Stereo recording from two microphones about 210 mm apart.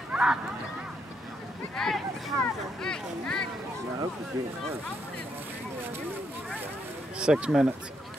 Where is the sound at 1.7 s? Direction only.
Centre (ahead or behind).